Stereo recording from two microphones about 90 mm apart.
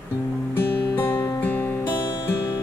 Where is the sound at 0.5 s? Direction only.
25° left (ahead or behind).